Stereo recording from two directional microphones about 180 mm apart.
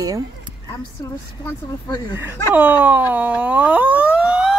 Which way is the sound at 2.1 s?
10° right (ahead or behind).